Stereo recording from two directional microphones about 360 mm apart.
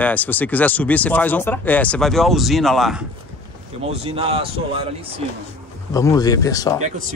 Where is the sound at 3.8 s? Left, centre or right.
Centre.